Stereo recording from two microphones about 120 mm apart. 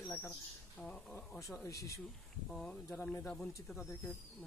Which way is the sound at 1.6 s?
25° left (ahead or behind).